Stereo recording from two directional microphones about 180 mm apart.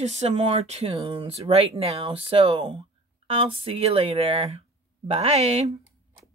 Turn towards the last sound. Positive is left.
turn(degrees=-35)  # may be behind; listen again after turning